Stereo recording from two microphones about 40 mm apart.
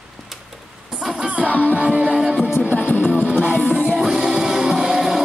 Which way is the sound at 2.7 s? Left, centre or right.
Left.